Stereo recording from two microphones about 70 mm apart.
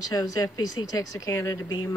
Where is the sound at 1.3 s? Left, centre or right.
Left.